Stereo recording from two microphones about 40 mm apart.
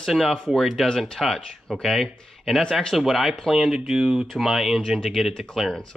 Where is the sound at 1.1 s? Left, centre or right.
Centre.